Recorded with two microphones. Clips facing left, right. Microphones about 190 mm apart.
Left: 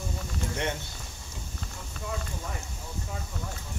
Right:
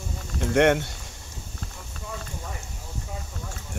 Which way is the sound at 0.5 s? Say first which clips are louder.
Right 16 dB; 75° right (ahead or behind).